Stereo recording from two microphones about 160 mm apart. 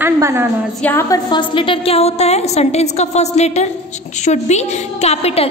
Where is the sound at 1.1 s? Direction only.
30° left (ahead or behind).